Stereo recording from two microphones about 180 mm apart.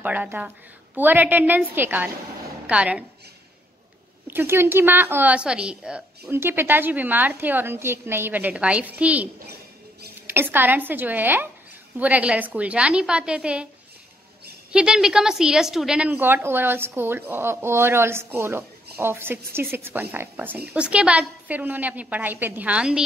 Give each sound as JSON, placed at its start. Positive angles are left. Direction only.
{"t": 0.0, "sound": "a woman's voice", "side_deg": -10}
{"t": 4.3, "sound": "speech", "side_deg": -10}
{"t": 14.7, "sound": "speech", "side_deg": -5}